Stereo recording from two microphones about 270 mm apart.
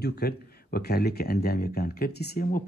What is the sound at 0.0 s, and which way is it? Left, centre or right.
Speech, left.